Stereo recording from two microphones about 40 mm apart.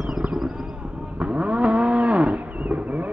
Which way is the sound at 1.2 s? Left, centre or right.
Right.